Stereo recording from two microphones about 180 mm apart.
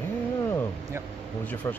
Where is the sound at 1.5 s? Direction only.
10° left (ahead or behind).